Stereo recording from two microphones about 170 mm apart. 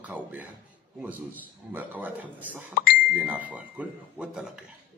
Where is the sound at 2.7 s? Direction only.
60° left (ahead or behind).